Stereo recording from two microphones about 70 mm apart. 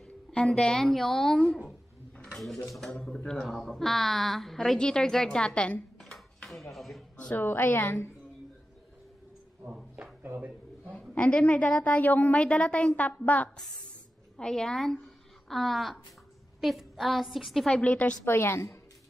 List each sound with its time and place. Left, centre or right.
0.0 s a woman's voice: centre
5.9 s dishes: centre
7.3 s a woman's voice: left
10.2 s a sound: right
10.9 s a sound: centre
11.1 s a woman's voice: centre
14.3 s a woman's voice: centre
18.2 s a woman's voice: left